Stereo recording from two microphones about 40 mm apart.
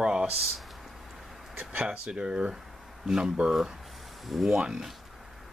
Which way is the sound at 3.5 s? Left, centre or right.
Centre.